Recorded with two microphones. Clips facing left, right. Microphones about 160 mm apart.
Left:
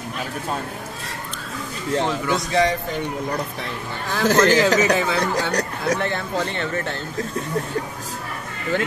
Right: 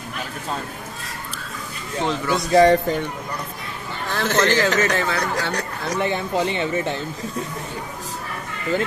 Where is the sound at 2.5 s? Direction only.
45° right (ahead or behind).